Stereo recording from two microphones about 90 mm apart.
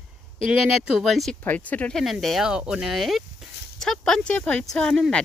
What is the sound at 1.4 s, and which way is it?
Speech, 20° left (ahead or behind).